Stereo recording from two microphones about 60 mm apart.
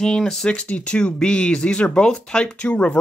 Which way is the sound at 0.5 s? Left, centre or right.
Left.